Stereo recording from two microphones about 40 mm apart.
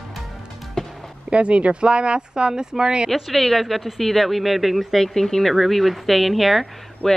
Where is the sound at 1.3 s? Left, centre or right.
Right.